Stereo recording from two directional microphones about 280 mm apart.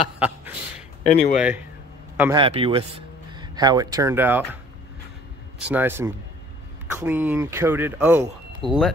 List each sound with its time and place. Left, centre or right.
1.0 s speech: left
2.1 s speech: centre
2.4 s a man's voice: centre
5.6 s speech: centre